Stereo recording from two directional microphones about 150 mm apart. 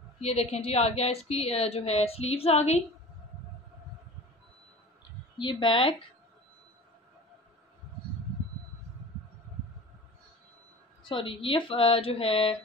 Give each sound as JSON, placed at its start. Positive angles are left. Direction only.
{"t": 0.2, "sound": "a woman's voice", "side_deg": 45}
{"t": 5.4, "sound": "speech", "side_deg": 35}
{"t": 11.1, "sound": "speech", "side_deg": 35}